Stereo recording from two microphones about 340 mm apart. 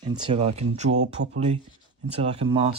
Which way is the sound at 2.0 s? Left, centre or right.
Centre.